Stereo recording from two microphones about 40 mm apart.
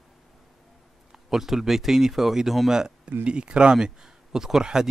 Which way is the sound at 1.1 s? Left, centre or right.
Centre.